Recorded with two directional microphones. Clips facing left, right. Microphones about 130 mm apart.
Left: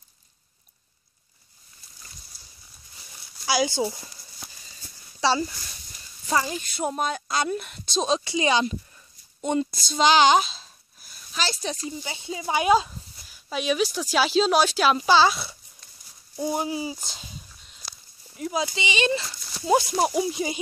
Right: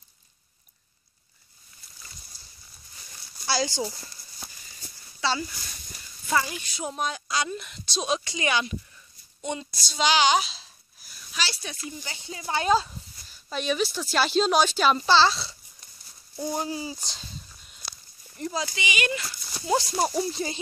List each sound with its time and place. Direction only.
3.4 s speech: 15° left (ahead or behind)
5.2 s speech: 30° left (ahead or behind)
6.6 s speech: 55° left (ahead or behind)
8.2 s speech: 25° left (ahead or behind)
9.4 s speech: 45° left (ahead or behind)
12.0 s speech: 20° left (ahead or behind)
17.0 s a sound: 5° left (ahead or behind)
18.5 s speech: 20° left (ahead or behind)